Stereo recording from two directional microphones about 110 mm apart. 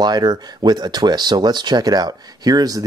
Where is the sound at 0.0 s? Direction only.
40° right (ahead or behind).